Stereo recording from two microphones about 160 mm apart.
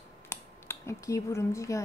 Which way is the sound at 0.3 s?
15° left (ahead or behind).